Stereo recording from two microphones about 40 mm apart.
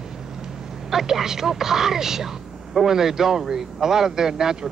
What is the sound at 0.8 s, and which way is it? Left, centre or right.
Speech, centre.